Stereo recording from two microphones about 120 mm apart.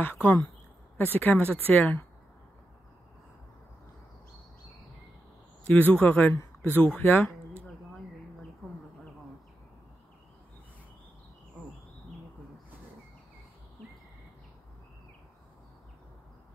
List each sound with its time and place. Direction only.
0.0 s speech: 15° left (ahead or behind)
5.7 s speech: 15° left (ahead or behind)